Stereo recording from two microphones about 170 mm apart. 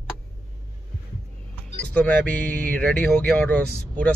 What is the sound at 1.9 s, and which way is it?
Speech, 10° left (ahead or behind).